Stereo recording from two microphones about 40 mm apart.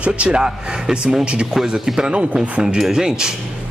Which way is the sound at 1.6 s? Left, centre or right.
Centre.